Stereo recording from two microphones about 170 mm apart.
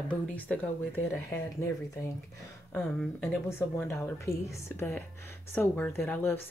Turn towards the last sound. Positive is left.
turn(degrees=10)  # may be behind; listen again after turning